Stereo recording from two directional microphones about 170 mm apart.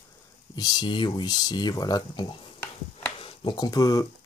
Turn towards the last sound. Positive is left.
turn(degrees=20)  # may be behind; listen again after turning